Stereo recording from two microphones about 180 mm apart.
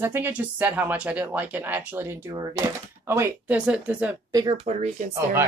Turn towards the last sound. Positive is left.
turn(degrees=-45)  # may be behind; listen again after turning